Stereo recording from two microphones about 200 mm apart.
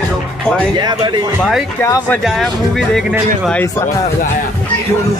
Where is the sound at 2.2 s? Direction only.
Centre (ahead or behind).